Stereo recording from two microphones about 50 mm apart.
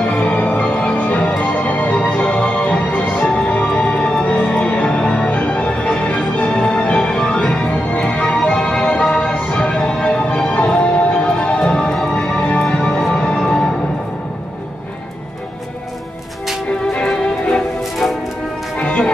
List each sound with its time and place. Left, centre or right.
0.0 s music: left
4.5 s music: left
4.8 s music: centre
11.3 s music: centre
17.1 s music: centre
18.0 s music: centre
18.8 s music: left